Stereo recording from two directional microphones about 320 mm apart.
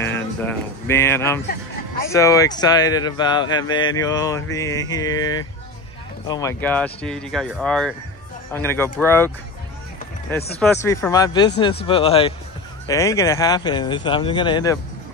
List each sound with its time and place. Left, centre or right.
0.0 s a man's voice: centre
10.6 s a man's voice: centre